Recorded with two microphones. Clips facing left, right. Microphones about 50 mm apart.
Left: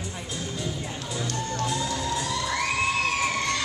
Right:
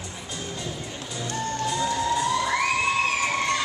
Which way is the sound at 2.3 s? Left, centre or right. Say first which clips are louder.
Right 4 dB; right.